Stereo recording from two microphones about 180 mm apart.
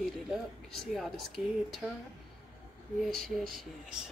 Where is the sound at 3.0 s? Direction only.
Centre (ahead or behind).